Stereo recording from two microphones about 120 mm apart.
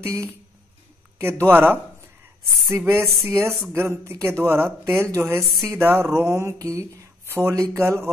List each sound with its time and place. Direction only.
0.0 s speech: 20° right (ahead or behind)
1.5 s speech: 15° right (ahead or behind)